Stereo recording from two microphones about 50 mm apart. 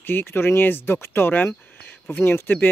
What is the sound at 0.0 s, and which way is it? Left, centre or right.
Speech, left.